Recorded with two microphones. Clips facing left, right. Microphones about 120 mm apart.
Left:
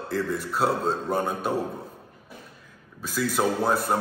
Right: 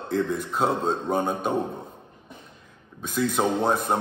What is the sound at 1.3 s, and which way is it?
Mantra, 5° left (ahead or behind).